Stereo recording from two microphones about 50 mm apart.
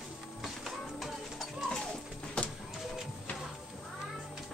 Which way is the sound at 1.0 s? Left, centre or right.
Centre.